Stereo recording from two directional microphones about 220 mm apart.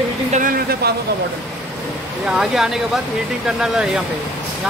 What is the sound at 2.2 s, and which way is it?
Speech, 5° right (ahead or behind).